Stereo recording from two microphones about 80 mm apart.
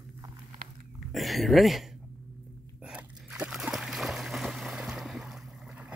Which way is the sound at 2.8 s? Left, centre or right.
Centre.